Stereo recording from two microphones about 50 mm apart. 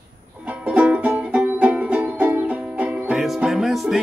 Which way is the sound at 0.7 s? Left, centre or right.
Right.